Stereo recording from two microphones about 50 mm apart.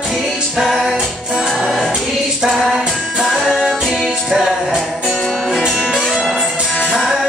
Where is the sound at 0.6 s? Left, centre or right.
Centre.